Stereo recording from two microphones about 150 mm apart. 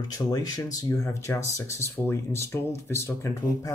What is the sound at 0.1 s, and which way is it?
Speech, 25° left (ahead or behind).